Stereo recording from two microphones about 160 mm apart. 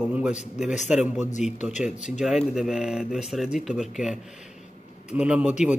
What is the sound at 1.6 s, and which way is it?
Speech, 50° left (ahead or behind).